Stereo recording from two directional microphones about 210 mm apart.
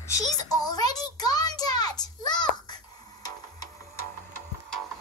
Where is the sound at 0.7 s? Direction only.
20° left (ahead or behind).